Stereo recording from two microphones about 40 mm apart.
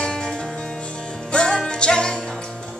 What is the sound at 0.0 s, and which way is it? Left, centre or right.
Music, left.